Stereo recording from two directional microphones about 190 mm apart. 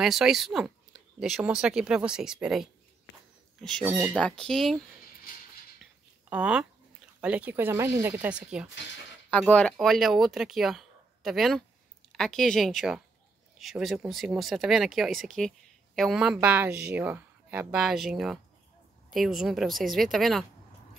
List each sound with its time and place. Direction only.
0.0 s speech: centre (ahead or behind)
3.8 s speech: 10° right (ahead or behind)
4.2 s speech: 5° left (ahead or behind)
6.3 s speech: 5° right (ahead or behind)
9.5 s speech: 5° left (ahead or behind)